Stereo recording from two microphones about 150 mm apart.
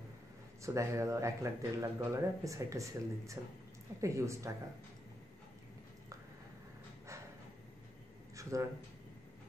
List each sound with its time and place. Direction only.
0.6 s speech: 20° right (ahead or behind)
8.4 s speech: 20° right (ahead or behind)